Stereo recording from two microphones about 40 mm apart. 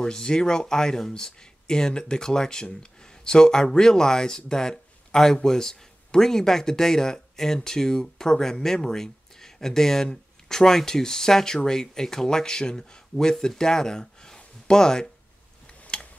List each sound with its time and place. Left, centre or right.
0.0 s speech: centre